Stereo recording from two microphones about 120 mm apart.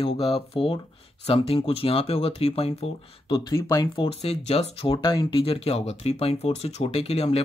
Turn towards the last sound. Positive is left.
turn(degrees=55)  # may be behind; listen again after turning